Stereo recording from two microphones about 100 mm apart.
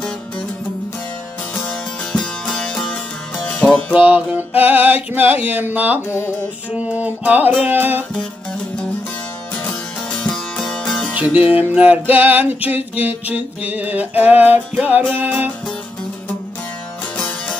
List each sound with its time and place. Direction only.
2.1 s music: 5° left (ahead or behind)
3.9 s music: 10° right (ahead or behind)
9.7 s music: 10° left (ahead or behind)
11.1 s music: 15° right (ahead or behind)